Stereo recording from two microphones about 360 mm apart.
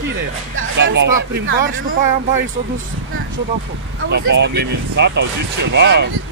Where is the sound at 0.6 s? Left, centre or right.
Right.